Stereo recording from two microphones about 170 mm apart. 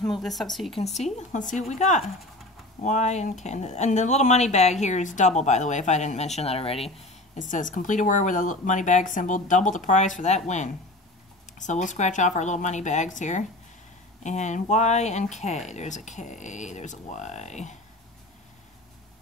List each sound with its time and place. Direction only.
0.0 s speech: centre (ahead or behind)
0.9 s speech: 40° left (ahead or behind)
7.3 s speech: 50° left (ahead or behind)